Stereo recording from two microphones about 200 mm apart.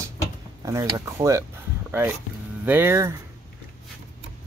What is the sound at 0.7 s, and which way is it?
Speech, 15° right (ahead or behind).